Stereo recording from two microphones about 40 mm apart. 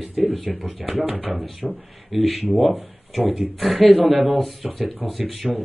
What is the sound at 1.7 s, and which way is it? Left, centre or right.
Speech, centre.